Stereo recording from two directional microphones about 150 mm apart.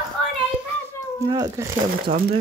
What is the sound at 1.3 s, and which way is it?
Speech, 25° right (ahead or behind).